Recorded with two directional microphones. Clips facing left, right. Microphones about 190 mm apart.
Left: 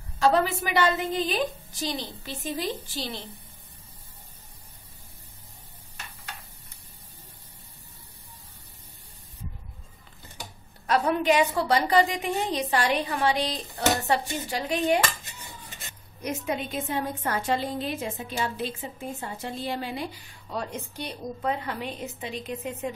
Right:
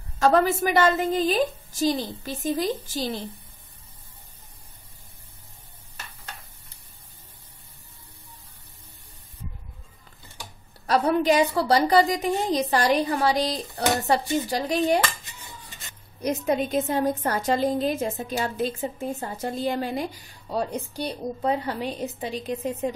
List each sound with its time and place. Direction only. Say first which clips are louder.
0.2 s a woman's voice: right 3 dB; 45° right (ahead or behind)
10.9 s a woman's voice: right 2 dB; 35° right (ahead or behind)
16.2 s a woman's voice: right 6 dB; 40° right (ahead or behind)